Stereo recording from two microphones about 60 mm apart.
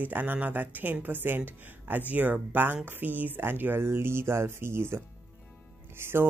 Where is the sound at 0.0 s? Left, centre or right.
Right.